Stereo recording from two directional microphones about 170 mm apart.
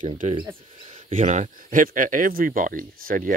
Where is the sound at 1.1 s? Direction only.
45° right (ahead or behind).